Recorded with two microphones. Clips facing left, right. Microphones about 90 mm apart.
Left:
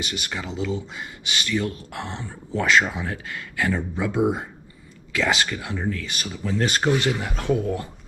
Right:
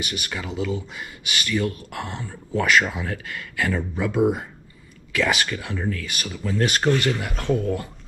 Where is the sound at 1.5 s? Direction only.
20° left (ahead or behind).